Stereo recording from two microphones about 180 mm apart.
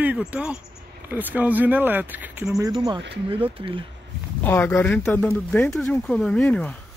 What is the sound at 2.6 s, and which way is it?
Speech, 25° right (ahead or behind).